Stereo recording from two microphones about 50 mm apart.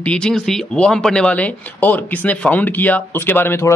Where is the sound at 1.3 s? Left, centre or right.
Left.